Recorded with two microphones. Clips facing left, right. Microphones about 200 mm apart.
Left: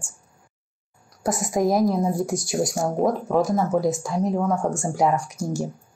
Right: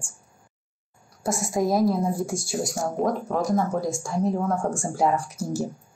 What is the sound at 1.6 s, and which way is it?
Speech, 20° left (ahead or behind).